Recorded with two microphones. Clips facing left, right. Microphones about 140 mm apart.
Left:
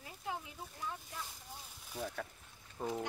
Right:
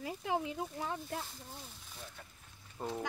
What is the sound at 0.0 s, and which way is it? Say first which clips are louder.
Speech: right 8 dB; 90° right.